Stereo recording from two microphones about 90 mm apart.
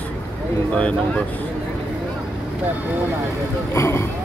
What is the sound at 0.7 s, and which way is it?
Speech, 15° left (ahead or behind).